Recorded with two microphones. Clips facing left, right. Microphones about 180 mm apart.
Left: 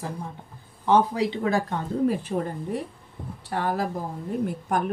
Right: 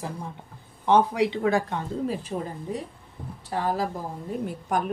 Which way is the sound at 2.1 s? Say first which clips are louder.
Left 4 dB; 60° left (ahead or behind).